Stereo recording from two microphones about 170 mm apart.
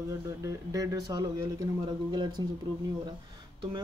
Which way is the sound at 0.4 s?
20° right (ahead or behind).